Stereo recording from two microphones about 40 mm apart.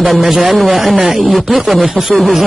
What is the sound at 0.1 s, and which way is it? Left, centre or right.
A man's voice, centre.